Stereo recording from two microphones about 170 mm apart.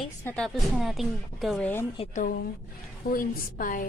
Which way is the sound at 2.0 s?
35° left (ahead or behind).